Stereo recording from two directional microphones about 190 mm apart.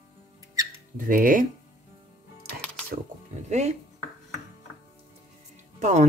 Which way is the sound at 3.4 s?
35° right (ahead or behind).